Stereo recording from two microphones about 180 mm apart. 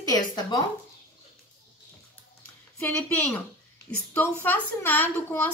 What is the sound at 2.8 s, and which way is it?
Speech, 5° left (ahead or behind).